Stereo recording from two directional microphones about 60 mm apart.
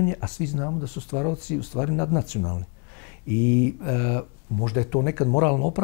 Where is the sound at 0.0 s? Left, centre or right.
Left.